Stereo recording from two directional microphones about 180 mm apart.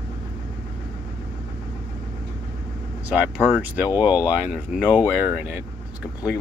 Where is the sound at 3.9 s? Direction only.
10° right (ahead or behind).